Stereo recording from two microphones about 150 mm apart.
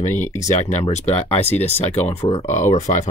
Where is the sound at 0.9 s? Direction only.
45° left (ahead or behind).